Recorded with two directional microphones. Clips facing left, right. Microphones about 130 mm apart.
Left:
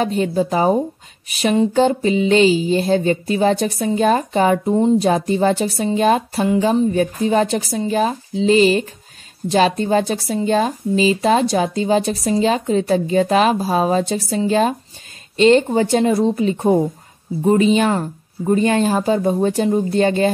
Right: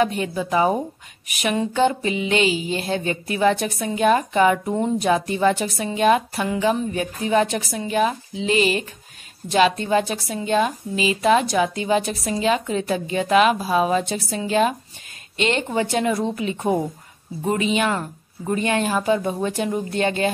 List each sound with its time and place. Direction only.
0.0 s speech: 35° left (ahead or behind)